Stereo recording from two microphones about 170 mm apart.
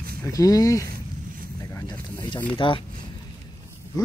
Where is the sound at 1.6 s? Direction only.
20° left (ahead or behind).